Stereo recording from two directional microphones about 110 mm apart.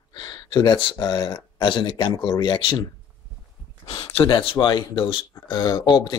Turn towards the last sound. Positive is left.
turn(degrees=40)  # may be behind; listen again after turning